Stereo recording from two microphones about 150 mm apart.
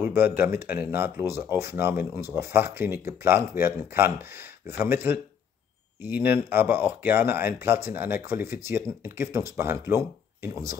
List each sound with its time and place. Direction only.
0.0 s speech: 15° right (ahead or behind)